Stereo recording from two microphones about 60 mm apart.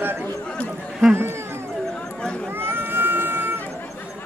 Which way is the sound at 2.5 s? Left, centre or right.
Right.